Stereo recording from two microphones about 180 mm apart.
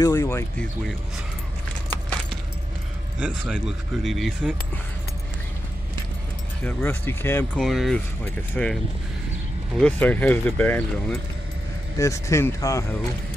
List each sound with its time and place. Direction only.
0.0 s speech: 15° left (ahead or behind)
1.9 s keys jangling: 5° left (ahead or behind)
3.2 s speech: 5° right (ahead or behind)
6.6 s speech: 10° left (ahead or behind)
7.6 s speech: centre (ahead or behind)
9.8 s speech: 10° left (ahead or behind)
12.0 s speech: 15° left (ahead or behind)